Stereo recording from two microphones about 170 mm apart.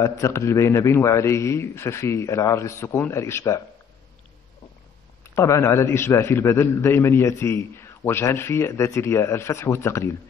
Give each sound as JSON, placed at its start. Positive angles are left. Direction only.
{"t": 0.0, "sound": "a man's voice", "side_deg": 20}
{"t": 5.3, "sound": "a man's voice", "side_deg": 15}